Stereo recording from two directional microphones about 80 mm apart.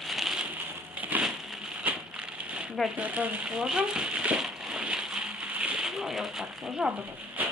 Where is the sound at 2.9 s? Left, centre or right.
Centre.